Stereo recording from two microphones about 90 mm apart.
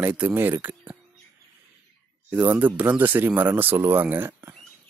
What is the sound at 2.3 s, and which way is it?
Speech, 20° right (ahead or behind).